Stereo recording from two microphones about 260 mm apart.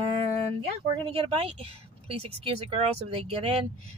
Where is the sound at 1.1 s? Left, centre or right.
Right.